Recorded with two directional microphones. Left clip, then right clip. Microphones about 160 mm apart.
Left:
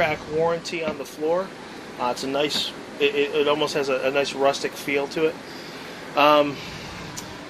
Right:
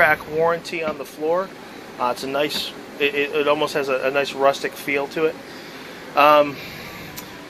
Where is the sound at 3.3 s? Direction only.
35° right (ahead or behind).